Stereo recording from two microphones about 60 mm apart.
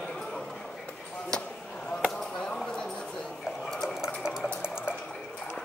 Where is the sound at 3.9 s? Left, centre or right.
Centre.